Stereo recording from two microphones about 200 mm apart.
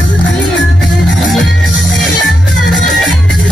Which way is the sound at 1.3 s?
Centre (ahead or behind).